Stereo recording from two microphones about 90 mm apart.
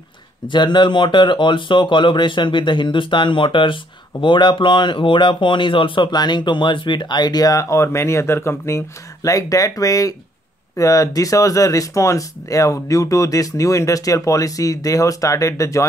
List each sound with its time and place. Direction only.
0.5 s speech: 55° left (ahead or behind); by 15.8 s 35° left (ahead or behind)